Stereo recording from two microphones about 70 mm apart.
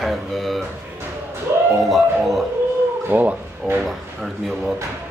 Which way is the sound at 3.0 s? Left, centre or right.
Right.